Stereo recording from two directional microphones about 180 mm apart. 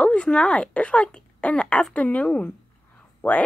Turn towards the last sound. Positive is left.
turn(degrees=5)  # may be behind; listen again after turning